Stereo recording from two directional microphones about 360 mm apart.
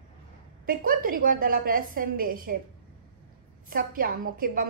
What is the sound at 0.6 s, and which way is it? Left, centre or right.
A woman's voice, right.